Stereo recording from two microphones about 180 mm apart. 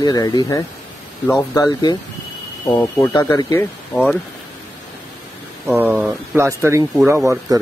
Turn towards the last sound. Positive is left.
turn(degrees=-15)  # may be behind; listen again after turning